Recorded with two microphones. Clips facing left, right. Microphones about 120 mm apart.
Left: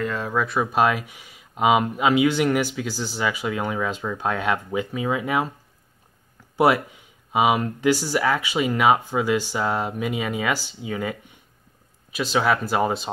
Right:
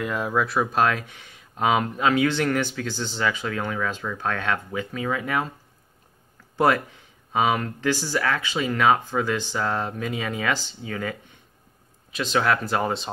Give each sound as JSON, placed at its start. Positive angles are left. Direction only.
{"t": 0.0, "sound": "speech", "side_deg": -10}
{"t": 6.5, "sound": "speech", "side_deg": 10}